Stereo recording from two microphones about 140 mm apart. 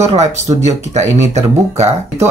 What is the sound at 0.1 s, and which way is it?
Speech, 55° right (ahead or behind).